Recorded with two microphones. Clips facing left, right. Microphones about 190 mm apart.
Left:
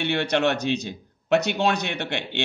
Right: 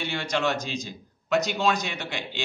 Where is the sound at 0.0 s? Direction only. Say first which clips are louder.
Left 5 dB; 60° left (ahead or behind).